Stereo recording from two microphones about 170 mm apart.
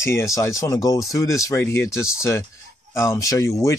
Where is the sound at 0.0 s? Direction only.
15° left (ahead or behind).